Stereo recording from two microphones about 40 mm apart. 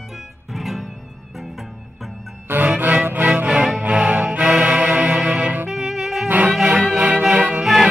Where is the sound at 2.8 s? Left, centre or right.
Right.